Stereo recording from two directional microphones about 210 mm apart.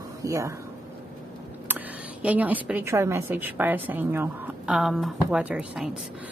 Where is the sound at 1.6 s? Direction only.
10° right (ahead or behind).